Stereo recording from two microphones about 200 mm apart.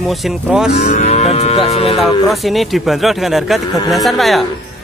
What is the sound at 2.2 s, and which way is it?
Speech, centre (ahead or behind).